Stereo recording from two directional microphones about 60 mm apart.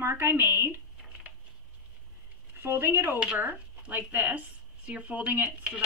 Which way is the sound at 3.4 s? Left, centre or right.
Right.